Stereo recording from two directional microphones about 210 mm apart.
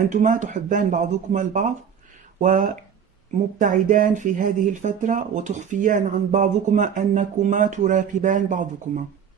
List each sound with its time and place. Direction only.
0.1 s speech: 35° right (ahead or behind)